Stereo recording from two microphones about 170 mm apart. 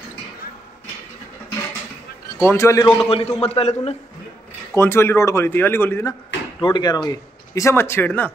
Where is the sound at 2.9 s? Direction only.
35° left (ahead or behind).